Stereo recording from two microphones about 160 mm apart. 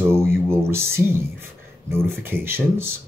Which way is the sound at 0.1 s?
15° right (ahead or behind).